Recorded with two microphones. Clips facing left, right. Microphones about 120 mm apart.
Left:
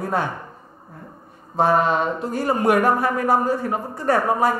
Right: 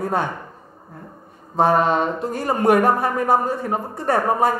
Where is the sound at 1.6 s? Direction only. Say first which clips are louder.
Right 1 dB; 40° right (ahead or behind).